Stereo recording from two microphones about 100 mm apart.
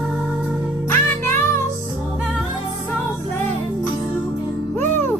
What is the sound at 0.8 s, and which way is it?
Music, 20° left (ahead or behind).